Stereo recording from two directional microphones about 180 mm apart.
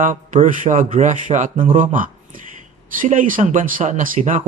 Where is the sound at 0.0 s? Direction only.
45° right (ahead or behind).